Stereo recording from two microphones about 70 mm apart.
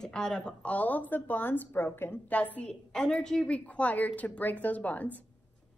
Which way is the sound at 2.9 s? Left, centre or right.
Centre.